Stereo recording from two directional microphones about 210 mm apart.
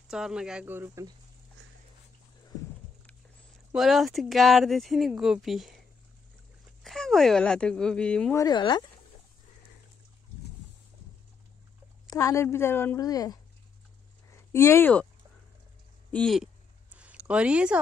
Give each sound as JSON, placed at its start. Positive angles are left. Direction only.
{"t": 0.1, "sound": "speech", "side_deg": -5}
{"t": 3.7, "sound": "speech", "side_deg": 0}
{"t": 6.8, "sound": "speech", "side_deg": 0}
{"t": 8.4, "sound": "speech", "side_deg": 20}
{"t": 12.1, "sound": "a woman's voice", "side_deg": 15}
{"t": 14.3, "sound": "a sound", "side_deg": 10}
{"t": 16.1, "sound": "speech", "side_deg": 5}
{"t": 16.9, "sound": "a sound", "side_deg": -5}